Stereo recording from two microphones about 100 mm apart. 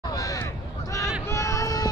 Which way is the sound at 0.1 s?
35° left (ahead or behind).